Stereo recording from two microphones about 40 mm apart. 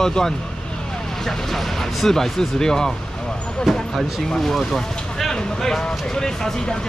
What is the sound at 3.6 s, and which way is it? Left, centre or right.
Speech, centre.